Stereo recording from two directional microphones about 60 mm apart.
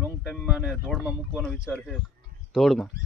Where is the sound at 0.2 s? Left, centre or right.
Centre.